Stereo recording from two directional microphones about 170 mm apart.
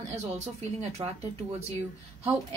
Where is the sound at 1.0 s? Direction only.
25° right (ahead or behind).